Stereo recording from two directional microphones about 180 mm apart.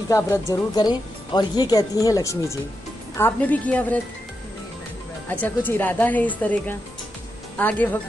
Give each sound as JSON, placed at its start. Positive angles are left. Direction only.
{"t": 0.5, "sound": "a woman's voice", "side_deg": 20}
{"t": 5.3, "sound": "a woman's voice", "side_deg": 10}